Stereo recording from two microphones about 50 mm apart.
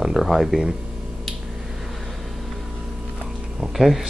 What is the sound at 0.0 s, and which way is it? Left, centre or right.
Speech, centre.